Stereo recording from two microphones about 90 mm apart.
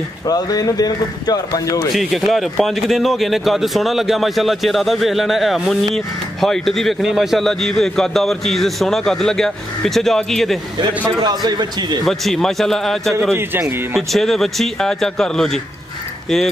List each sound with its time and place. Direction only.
0.3 s speech: 45° left (ahead or behind)
2.0 s a man's voice: centre (ahead or behind)
11.1 s a man's voice: 50° right (ahead or behind)
12.0 s a man's voice: 5° left (ahead or behind)
13.3 s a man's voice: 30° right (ahead or behind)
14.1 s a man's voice: 5° left (ahead or behind)